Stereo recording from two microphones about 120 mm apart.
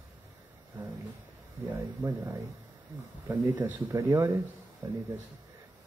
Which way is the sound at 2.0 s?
25° right (ahead or behind).